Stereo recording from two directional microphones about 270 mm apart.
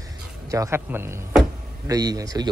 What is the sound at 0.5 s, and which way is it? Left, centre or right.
A man's voice, centre.